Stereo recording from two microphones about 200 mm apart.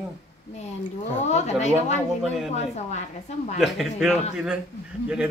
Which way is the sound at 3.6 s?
Centre (ahead or behind).